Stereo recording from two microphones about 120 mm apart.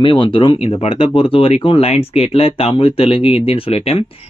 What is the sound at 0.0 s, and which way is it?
Speech, 40° left (ahead or behind).